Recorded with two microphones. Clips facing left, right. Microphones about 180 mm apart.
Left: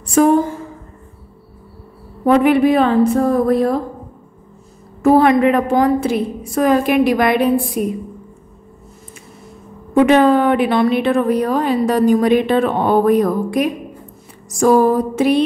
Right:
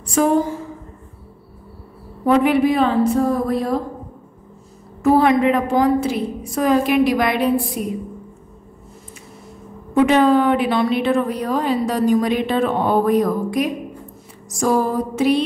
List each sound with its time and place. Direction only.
0.0 s a woman's voice: 50° left (ahead or behind)
2.2 s a woman's voice: 55° left (ahead or behind)
5.0 s a woman's voice: 55° left (ahead or behind)
9.9 s a woman's voice: 55° left (ahead or behind)